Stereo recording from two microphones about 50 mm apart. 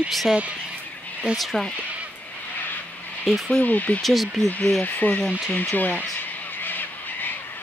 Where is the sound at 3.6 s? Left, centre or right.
Left.